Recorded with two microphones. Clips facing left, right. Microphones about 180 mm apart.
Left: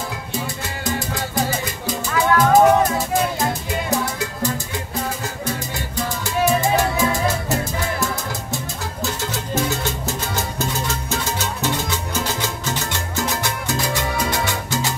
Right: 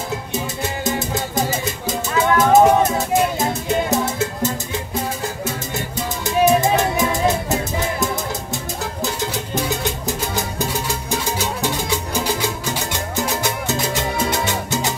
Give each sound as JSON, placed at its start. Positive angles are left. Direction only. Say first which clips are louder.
{"t": 0.8, "sound": "music", "louder": "even", "side_deg": -20}
{"t": 6.3, "sound": "music", "louder": "right 3 dB", "side_deg": -20}
{"t": 9.8, "sound": "music", "louder": "right 2 dB", "side_deg": -15}